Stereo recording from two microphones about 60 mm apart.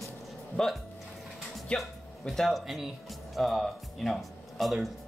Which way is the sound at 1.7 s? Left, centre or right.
Centre.